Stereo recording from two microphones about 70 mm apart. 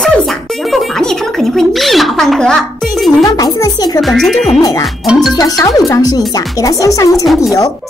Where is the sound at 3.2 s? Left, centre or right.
Left.